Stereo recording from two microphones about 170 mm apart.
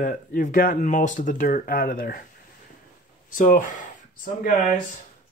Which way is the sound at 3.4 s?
50° left (ahead or behind).